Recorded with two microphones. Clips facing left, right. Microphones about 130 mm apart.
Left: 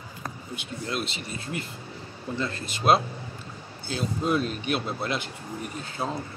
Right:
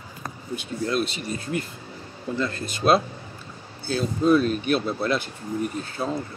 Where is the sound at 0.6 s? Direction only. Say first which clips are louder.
Right 7 dB; 25° left (ahead or behind).